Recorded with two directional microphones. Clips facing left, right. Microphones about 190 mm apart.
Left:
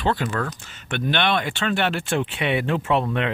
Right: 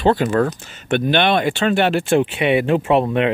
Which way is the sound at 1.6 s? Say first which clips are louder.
Right 7 dB; 15° right (ahead or behind).